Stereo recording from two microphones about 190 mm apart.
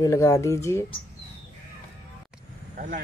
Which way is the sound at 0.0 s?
15° left (ahead or behind).